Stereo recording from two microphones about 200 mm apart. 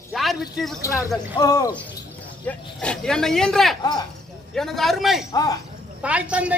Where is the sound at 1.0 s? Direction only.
20° left (ahead or behind).